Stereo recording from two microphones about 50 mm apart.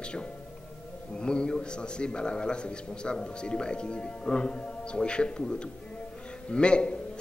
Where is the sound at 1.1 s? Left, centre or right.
Centre.